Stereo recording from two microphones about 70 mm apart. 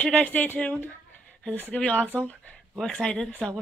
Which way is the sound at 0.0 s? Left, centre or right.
Centre.